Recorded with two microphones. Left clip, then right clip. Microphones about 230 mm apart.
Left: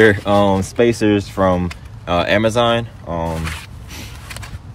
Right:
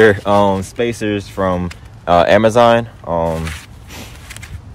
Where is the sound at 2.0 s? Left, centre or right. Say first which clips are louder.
Right 6 dB; right.